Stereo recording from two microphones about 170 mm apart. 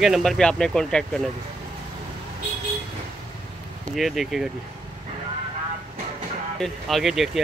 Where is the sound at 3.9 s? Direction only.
Centre (ahead or behind).